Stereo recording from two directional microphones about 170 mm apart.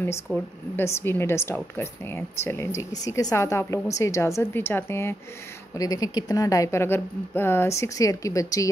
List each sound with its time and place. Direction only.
0.3 s speech: 15° right (ahead or behind)
0.7 s speech: 10° left (ahead or behind)